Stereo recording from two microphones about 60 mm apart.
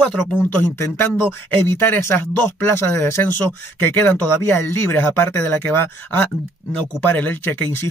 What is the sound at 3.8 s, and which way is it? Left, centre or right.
Speech, left.